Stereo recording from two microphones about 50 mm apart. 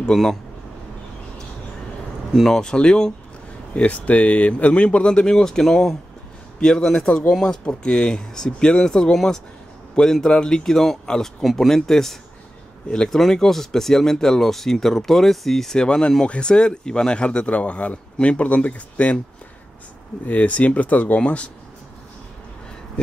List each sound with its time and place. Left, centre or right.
0.1 s speech: centre
2.4 s speech: centre
3.7 s speech: left
20.2 s speech: left